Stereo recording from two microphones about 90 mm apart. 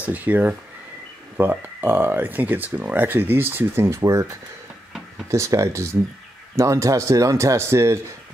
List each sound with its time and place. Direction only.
0.0 s speech: 20° right (ahead or behind); by 4.3 s 35° right (ahead or behind)
5.3 s speech: 35° right (ahead or behind)